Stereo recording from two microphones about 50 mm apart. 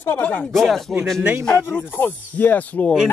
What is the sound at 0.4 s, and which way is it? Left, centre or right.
Speech, centre.